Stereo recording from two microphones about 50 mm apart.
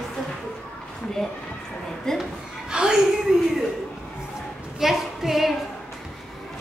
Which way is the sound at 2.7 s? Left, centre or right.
Centre.